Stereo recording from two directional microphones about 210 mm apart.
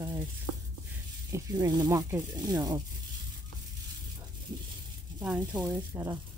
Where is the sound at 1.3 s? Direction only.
20° right (ahead or behind).